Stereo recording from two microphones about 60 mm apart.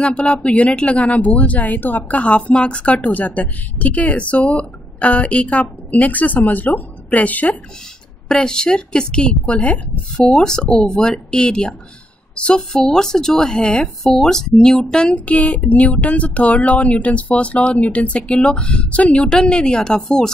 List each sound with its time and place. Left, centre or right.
0.0 s speech: centre
8.3 s speech: centre
15.1 s speech: left